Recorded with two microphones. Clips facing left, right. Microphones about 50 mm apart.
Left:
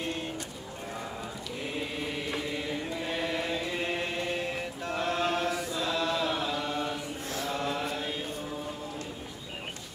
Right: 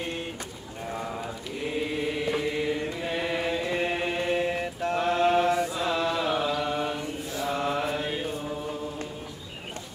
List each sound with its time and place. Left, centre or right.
1.7 s chant: centre
6.6 s mantra: centre